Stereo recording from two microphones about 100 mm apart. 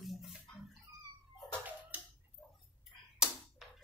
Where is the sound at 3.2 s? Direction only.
5° right (ahead or behind).